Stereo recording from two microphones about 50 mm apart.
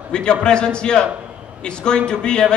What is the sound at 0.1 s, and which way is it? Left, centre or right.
A man's voice, centre.